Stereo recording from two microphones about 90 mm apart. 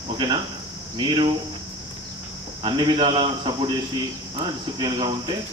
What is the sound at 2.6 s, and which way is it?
A man's voice, 60° right (ahead or behind).